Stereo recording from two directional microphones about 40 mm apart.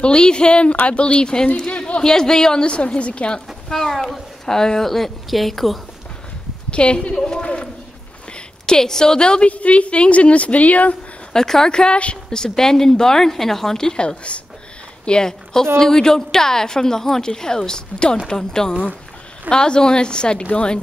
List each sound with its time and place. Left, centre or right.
0.0 s a woman's voice: left
1.7 s a sound: left
2.0 s a woman's voice: centre
3.7 s speech: centre
6.7 s a woman's voice: left
7.2 s a sound: centre
8.3 s speech: centre
9.5 s a woman's voice: left
11.3 s a woman's voice: centre; by 12.2 s left
12.3 s a woman's voice: centre
15.0 s a woman's voice: centre